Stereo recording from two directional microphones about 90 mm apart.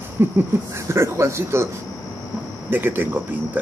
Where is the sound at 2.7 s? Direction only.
25° right (ahead or behind).